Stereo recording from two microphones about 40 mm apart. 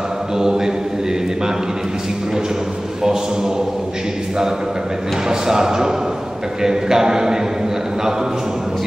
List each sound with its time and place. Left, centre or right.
0.4 s a man's voice: centre
3.0 s a man's voice: centre
5.3 s a man's voice: centre